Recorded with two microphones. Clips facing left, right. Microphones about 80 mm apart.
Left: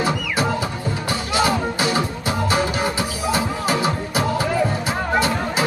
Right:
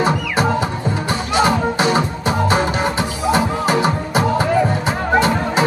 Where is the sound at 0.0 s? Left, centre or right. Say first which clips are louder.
Right 4 dB; right.